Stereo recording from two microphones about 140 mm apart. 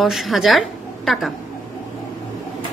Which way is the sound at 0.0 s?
Centre (ahead or behind).